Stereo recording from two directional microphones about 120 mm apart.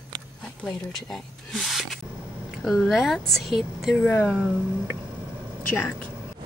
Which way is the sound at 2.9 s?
Centre (ahead or behind).